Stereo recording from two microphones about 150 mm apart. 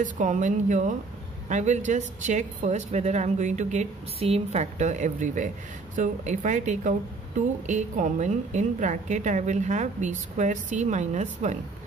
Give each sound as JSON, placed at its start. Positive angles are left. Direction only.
{"t": 0.0, "sound": "a woman's voice", "side_deg": -55}